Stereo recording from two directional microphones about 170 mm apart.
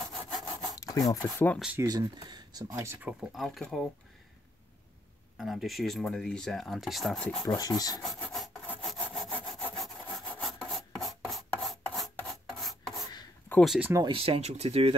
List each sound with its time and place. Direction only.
0.3 s sawing: centre (ahead or behind)
0.7 s rub: 20° left (ahead or behind)
1.2 s speech: 10° left (ahead or behind)
1.8 s speech: 20° right (ahead or behind)
2.7 s speech: 15° right (ahead or behind)
5.4 s speech: centre (ahead or behind)
7.4 s speech: 20° left (ahead or behind)
8.2 s wood: 5° left (ahead or behind)
11.6 s rub: centre (ahead or behind)
13.5 s a sound: 5° left (ahead or behind)
13.7 s speech: 10° right (ahead or behind)
14.0 s speech: 35° right (ahead or behind)